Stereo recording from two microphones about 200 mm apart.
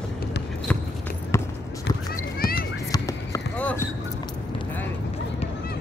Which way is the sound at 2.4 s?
50° left (ahead or behind).